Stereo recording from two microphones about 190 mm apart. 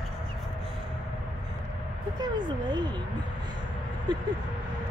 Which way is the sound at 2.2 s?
20° right (ahead or behind).